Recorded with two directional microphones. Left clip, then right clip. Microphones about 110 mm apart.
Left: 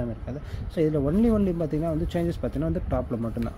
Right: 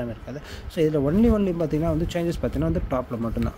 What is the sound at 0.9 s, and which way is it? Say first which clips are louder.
Speech: right 3 dB; 10° right (ahead or behind).